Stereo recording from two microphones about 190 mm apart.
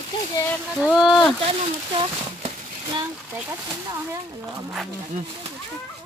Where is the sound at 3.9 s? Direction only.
15° right (ahead or behind).